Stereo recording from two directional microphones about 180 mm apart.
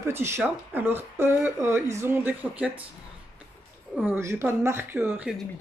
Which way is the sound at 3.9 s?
10° right (ahead or behind).